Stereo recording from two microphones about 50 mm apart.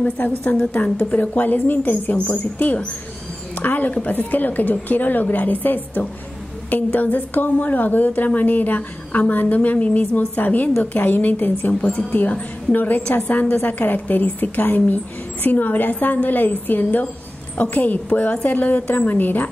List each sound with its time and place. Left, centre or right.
0.0 s a woman's voice: left